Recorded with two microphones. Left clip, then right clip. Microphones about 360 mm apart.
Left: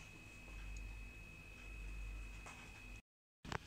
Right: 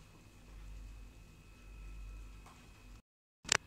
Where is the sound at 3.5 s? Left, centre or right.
Right.